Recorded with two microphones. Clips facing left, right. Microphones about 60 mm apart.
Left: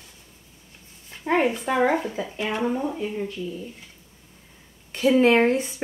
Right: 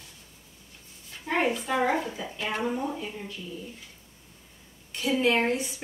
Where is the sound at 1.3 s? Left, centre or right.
Centre.